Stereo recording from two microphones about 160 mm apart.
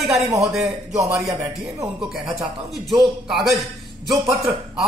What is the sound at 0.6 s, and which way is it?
A man's voice, 20° right (ahead or behind).